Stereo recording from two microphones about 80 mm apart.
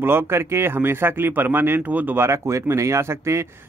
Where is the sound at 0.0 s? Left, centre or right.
Right.